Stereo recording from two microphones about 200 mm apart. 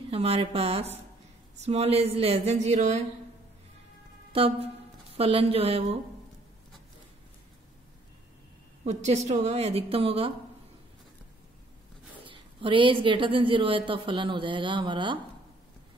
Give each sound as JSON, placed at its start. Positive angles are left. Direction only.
{"t": 0.1, "sound": "a woman's voice", "side_deg": -30}
{"t": 4.3, "sound": "a woman's voice", "side_deg": -30}
{"t": 8.8, "sound": "a woman's voice", "side_deg": -35}
{"t": 12.3, "sound": "a woman's voice", "side_deg": -25}